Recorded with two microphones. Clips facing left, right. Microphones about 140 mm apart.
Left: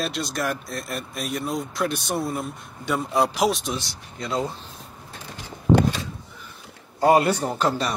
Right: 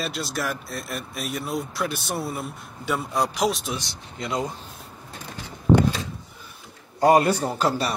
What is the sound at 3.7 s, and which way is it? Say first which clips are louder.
Speech: left 1 dB; 20° right (ahead or behind).